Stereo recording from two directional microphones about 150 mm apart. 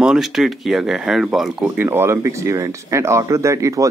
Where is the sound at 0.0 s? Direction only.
5° right (ahead or behind).